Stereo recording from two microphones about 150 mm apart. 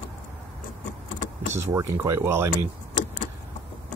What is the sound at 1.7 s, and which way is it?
Speech, 20° right (ahead or behind).